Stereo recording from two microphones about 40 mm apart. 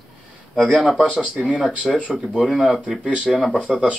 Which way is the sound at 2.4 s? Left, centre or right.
Centre.